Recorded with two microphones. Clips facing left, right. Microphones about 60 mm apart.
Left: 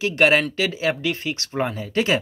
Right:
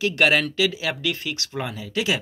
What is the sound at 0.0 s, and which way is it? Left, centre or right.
Speech, left.